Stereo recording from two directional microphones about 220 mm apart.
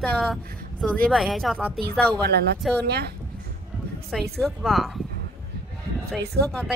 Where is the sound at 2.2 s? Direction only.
45° right (ahead or behind).